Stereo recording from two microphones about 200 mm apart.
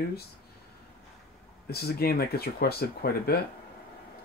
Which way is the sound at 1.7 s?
50° left (ahead or behind).